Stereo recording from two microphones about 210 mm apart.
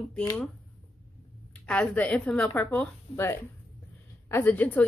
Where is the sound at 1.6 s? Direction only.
5° left (ahead or behind).